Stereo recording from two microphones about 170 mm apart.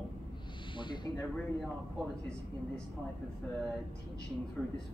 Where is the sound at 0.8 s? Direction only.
25° left (ahead or behind).